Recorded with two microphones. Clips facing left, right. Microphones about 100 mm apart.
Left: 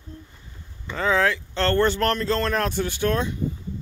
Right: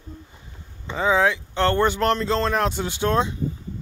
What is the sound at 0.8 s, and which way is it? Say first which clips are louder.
Speech: right 2 dB; 15° right (ahead or behind).